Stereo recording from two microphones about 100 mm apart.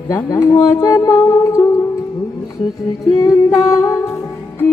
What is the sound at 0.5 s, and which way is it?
Music, 30° left (ahead or behind).